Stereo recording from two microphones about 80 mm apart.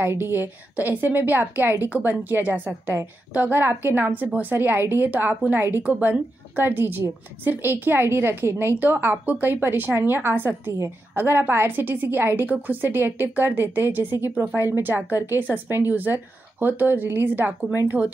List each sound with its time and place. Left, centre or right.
0.0 s a woman's voice: right